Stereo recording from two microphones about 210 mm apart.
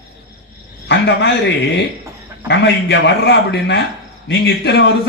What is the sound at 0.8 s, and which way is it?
Speech, 55° left (ahead or behind).